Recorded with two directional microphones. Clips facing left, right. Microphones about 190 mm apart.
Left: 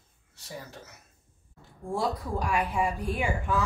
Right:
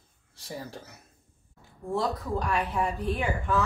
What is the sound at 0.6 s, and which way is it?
Speech, 30° right (ahead or behind).